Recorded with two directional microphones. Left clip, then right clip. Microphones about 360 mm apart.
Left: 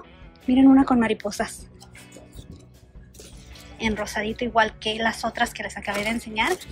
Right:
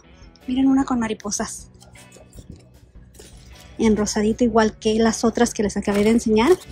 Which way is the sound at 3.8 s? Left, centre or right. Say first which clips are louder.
Right 6 dB; centre.